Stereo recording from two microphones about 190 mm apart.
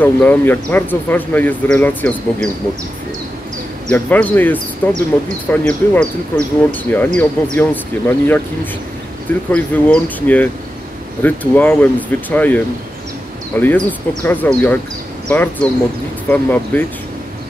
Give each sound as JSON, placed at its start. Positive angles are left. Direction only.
{"t": 0.0, "sound": "speech", "side_deg": 10}
{"t": 3.9, "sound": "speech", "side_deg": 10}
{"t": 9.5, "sound": "speech", "side_deg": 5}